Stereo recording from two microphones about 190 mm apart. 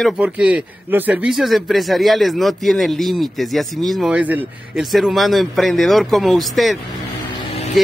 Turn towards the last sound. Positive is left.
turn(degrees=30)  # may be behind; listen again after turning